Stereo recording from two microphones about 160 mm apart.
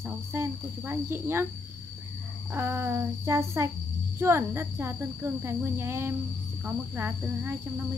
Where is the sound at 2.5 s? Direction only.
15° right (ahead or behind).